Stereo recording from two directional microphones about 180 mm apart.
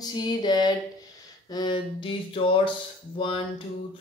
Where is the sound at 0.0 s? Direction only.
25° left (ahead or behind).